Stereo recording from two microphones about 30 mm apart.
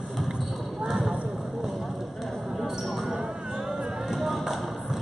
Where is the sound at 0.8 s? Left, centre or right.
Centre.